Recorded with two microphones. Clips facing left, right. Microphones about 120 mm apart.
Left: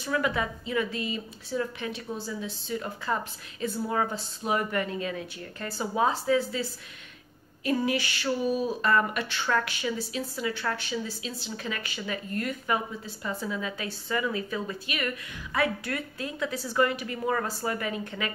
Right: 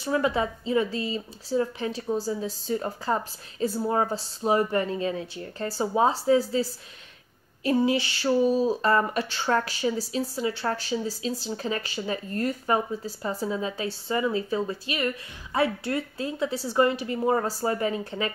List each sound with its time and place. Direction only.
0.0 s speech: 30° right (ahead or behind)